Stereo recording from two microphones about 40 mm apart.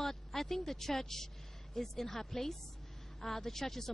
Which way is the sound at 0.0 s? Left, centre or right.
Centre.